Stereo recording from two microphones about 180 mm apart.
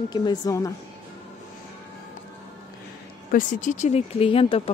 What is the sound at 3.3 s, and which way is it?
Speech, 45° left (ahead or behind).